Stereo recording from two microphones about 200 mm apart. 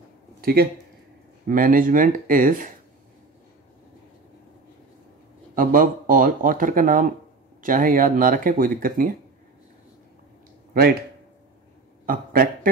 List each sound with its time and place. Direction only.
0.4 s speech: 50° right (ahead or behind)
5.5 s speech: 45° right (ahead or behind)
10.7 s speech: 50° right (ahead or behind)
12.1 s speech: 45° right (ahead or behind)